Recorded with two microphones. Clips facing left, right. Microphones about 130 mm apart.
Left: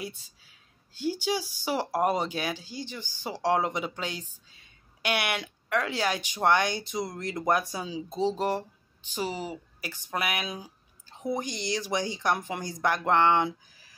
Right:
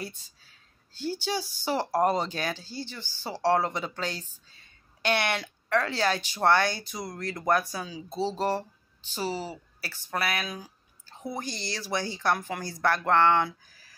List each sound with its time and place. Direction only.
0.0 s speech: 10° left (ahead or behind)